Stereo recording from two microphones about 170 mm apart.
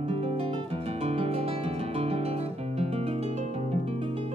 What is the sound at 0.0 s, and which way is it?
Music, 35° right (ahead or behind).